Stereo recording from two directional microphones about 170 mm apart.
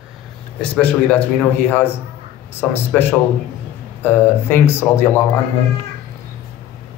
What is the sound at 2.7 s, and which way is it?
Speech, 15° left (ahead or behind).